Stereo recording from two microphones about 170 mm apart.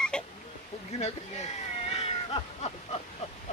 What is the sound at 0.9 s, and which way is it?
Speech, 40° left (ahead or behind).